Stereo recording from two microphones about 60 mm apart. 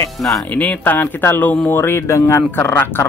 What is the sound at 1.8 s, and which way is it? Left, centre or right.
Speech, left.